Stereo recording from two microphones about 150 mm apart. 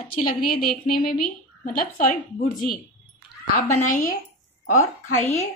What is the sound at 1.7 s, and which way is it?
Speech, 60° left (ahead or behind).